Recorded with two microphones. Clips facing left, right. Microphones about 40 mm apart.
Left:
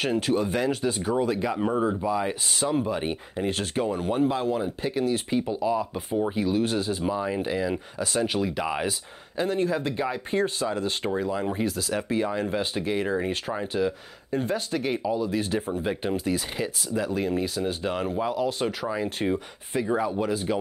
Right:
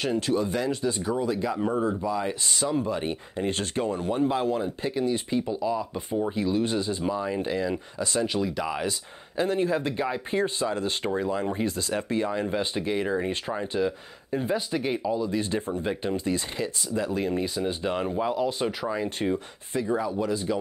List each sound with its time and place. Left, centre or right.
0.3 s speech: centre
0.9 s speech: left
4.2 s speech: centre
5.3 s speech: centre
6.6 s speech: centre
9.4 s speech: centre; by 20.3 s left